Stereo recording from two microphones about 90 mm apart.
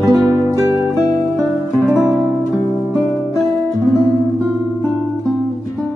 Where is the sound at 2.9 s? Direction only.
Centre (ahead or behind).